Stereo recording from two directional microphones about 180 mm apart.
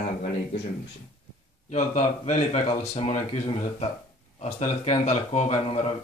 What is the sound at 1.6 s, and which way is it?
Speech, 40° left (ahead or behind).